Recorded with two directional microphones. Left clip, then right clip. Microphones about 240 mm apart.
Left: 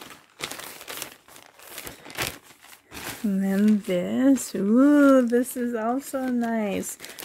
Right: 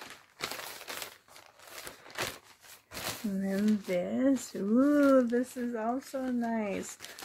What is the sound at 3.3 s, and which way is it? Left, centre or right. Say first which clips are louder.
Speech: left 9 dB; left.